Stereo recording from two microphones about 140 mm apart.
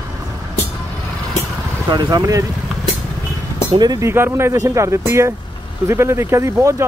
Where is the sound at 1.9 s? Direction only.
30° right (ahead or behind).